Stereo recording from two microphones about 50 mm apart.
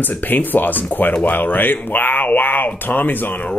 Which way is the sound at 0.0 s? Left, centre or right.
Left.